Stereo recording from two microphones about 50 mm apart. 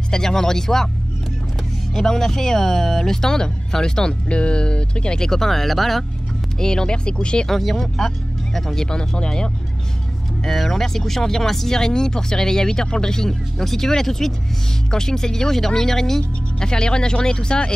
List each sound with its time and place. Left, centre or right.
0.1 s speech: centre
2.0 s speech: centre
6.6 s speech: centre
7.4 s speech: centre
10.4 s speech: centre